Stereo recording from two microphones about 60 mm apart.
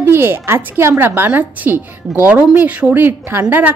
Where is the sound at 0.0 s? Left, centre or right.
Right.